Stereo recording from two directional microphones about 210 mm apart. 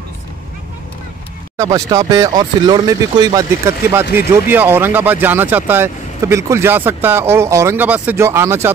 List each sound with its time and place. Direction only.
1.6 s speech: 15° right (ahead or behind)